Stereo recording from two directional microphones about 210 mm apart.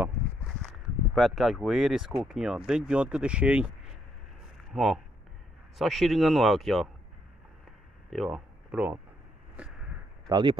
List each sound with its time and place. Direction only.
1.1 s speech: centre (ahead or behind)
8.1 s speech: centre (ahead or behind)
10.2 s speech: 20° right (ahead or behind)